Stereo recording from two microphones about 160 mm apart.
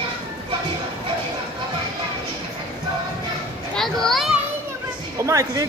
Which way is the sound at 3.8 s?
5° left (ahead or behind).